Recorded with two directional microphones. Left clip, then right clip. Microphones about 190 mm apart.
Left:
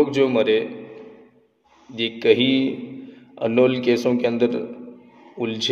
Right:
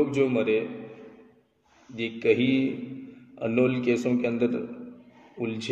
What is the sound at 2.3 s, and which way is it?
Speech, 5° right (ahead or behind).